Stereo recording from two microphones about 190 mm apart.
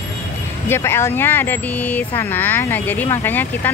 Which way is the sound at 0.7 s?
15° left (ahead or behind).